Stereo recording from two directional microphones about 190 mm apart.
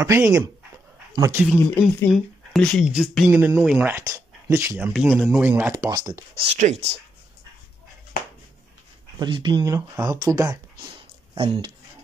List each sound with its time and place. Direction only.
0.0 s speech: 15° right (ahead or behind)
1.5 s speech: 10° left (ahead or behind); by 6.2 s 20° right (ahead or behind)
6.5 s speech: 35° right (ahead or behind)
9.2 s speech: 25° right (ahead or behind)